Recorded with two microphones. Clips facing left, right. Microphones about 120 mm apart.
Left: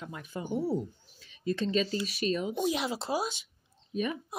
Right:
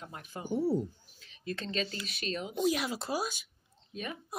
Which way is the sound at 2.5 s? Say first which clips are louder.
Even; 25° left (ahead or behind).